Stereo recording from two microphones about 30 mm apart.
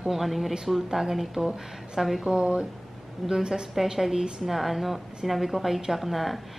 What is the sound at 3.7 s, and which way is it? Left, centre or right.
A woman's voice, centre.